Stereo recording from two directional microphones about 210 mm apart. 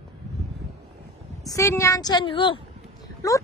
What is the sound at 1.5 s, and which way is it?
A woman's voice, 15° left (ahead or behind).